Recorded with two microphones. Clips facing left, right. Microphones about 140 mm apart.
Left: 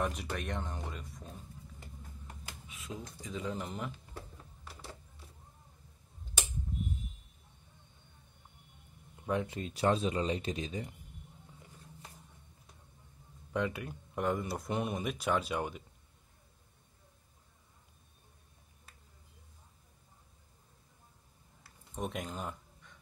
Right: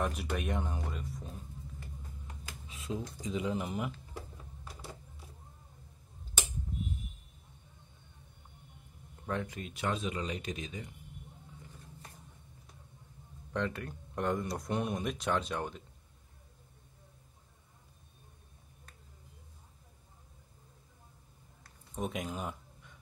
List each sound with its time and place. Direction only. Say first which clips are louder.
0.0 s speech: right 1 dB; 5° right (ahead or behind)
2.7 s a sound: right 6 dB; 30° right (ahead or behind)
3.2 s speech: right 3 dB; 15° right (ahead or behind)
9.2 s speech: left 3 dB; 15° left (ahead or behind)
9.5 s speech: left 5 dB; 30° left (ahead or behind)
13.5 s speech: left 1 dB; 5° left (ahead or behind)
21.6 s a sound: right 1 dB; centre (ahead or behind)